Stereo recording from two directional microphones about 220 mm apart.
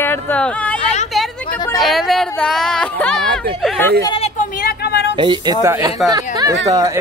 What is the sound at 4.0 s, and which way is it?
Speech, 25° left (ahead or behind).